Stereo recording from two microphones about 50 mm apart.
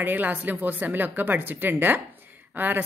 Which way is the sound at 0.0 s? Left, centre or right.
Right.